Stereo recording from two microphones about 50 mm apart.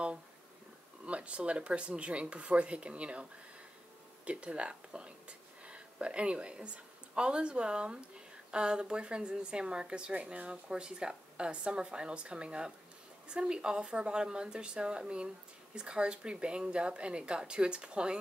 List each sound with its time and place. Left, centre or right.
1.0 s a woman's voice: right